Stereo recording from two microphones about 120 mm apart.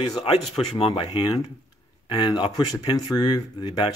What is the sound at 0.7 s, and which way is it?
Speech, 55° left (ahead or behind).